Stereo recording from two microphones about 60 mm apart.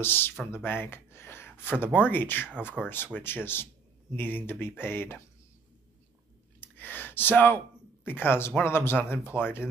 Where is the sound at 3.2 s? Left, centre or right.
Left.